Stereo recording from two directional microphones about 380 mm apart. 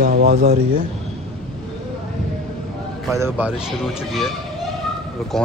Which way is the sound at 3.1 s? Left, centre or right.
Centre.